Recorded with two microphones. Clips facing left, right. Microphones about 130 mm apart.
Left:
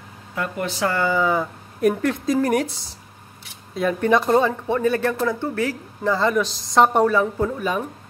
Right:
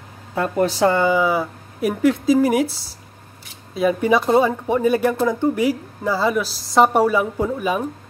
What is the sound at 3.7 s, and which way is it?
Speech, 5° right (ahead or behind).